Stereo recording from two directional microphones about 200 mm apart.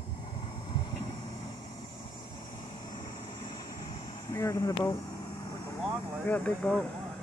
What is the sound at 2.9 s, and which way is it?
Vehicle, 20° left (ahead or behind).